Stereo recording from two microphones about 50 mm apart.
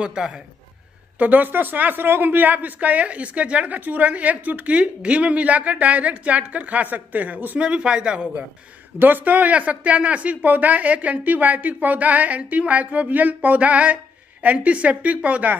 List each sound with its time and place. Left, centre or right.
0.0 s a man's voice: centre
1.1 s a woman's voice: right
7.5 s a woman's voice: right
8.9 s a woman's voice: right